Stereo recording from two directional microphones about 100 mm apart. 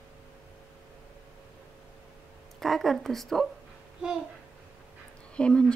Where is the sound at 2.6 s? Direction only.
Centre (ahead or behind).